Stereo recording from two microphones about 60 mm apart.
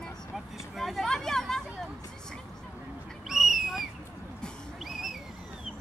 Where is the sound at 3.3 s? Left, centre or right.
Centre.